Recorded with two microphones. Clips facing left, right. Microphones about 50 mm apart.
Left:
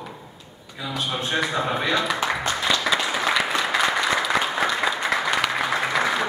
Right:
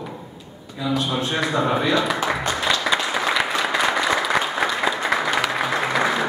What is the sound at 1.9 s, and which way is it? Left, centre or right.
Applause, centre.